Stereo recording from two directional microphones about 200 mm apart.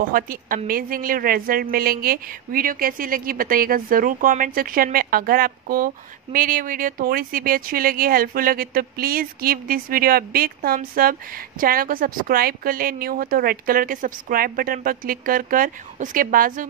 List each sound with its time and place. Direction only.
0.1 s speech: 45° right (ahead or behind)